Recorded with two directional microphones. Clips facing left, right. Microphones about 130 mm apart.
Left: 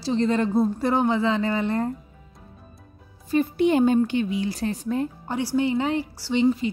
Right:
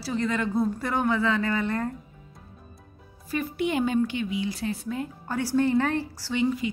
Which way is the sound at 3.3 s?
30° left (ahead or behind).